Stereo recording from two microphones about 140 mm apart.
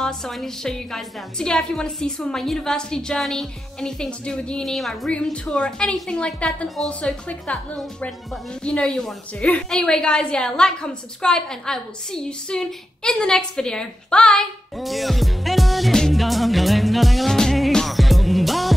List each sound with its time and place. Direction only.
0.0 s a woman's voice: 5° left (ahead or behind)